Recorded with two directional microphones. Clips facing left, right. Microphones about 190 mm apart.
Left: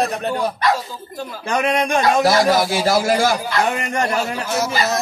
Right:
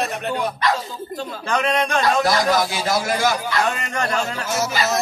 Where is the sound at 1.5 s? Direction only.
15° left (ahead or behind).